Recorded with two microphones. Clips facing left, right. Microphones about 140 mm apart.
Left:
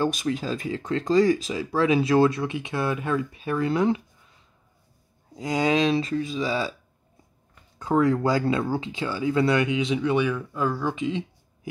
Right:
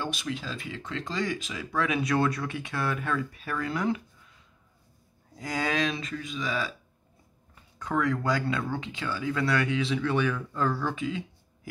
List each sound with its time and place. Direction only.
0.0 s speech: 45° left (ahead or behind); by 4.0 s 25° left (ahead or behind)
5.3 s speech: 20° left (ahead or behind)
7.8 s speech: 30° left (ahead or behind)